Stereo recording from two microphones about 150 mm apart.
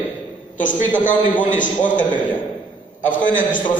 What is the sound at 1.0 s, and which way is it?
A man's voice, 60° left (ahead or behind).